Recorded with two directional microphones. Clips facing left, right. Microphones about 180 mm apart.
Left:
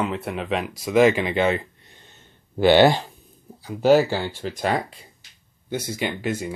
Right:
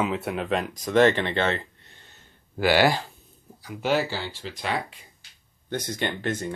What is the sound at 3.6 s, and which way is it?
Speech, 40° left (ahead or behind).